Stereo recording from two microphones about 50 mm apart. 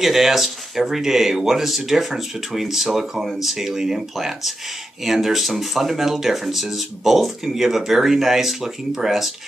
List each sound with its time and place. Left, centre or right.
0.0 s speech: centre